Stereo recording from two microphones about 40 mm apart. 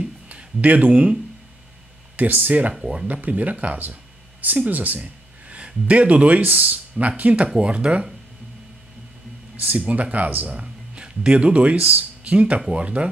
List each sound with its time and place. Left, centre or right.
0.3 s speech: right
2.1 s speech: right
4.6 s a sound: right
5.6 s speech: right
7.4 s speech: centre
7.7 s speech: right
9.6 s speech: right
10.5 s speech: right